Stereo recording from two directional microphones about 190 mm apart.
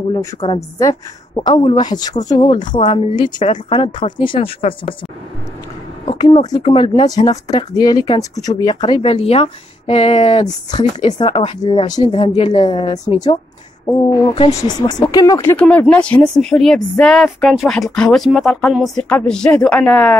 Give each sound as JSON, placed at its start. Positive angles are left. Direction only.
{"t": 0.1, "sound": "speech", "side_deg": 25}
{"t": 6.1, "sound": "speech", "side_deg": 20}
{"t": 14.3, "sound": "speech", "side_deg": 25}
{"t": 15.5, "sound": "speech", "side_deg": 5}